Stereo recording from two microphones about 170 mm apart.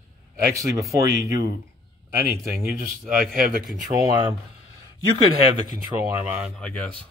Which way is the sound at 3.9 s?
20° right (ahead or behind).